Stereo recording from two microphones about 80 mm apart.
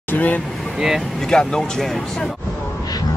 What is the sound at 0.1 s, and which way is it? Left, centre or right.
Speech, centre.